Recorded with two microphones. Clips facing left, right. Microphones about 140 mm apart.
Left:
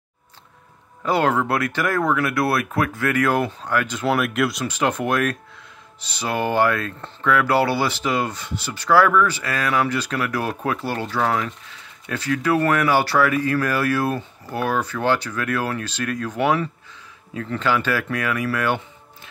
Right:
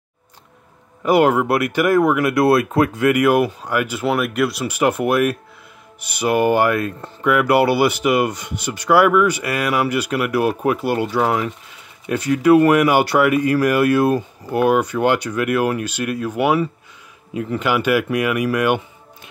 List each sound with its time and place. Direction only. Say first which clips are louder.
1.0 s speech: right 5 dB; 15° right (ahead or behind)